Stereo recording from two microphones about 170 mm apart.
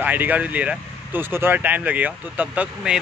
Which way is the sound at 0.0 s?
10° right (ahead or behind).